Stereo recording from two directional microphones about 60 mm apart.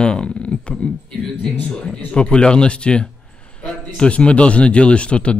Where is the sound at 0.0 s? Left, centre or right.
Centre.